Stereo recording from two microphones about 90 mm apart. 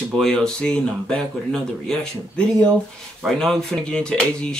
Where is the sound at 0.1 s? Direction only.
10° left (ahead or behind).